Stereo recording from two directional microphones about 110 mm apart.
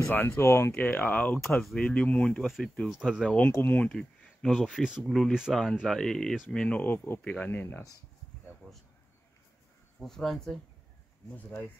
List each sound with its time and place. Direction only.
0.0 s speech: 15° left (ahead or behind); by 3.3 s 5° right (ahead or behind)
3.3 s speech: 15° left (ahead or behind)
8.6 s a sound: 5° right (ahead or behind)
9.9 s speech: 5° left (ahead or behind)
11.3 s speech: 15° left (ahead or behind)